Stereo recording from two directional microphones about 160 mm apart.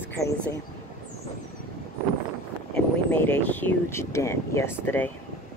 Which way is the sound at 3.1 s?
10° left (ahead or behind).